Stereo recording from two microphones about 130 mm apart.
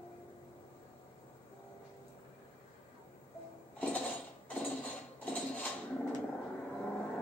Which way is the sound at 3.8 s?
10° left (ahead or behind).